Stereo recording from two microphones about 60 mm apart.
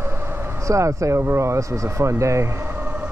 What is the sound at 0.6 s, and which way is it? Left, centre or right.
Speech, right.